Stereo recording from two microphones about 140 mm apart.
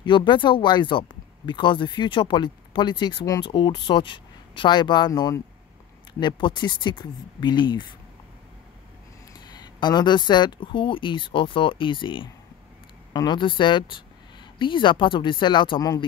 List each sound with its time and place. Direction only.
0.0 s speech: 35° left (ahead or behind)
9.8 s speech: 30° left (ahead or behind)